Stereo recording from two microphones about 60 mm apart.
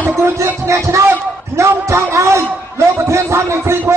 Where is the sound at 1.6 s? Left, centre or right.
Right.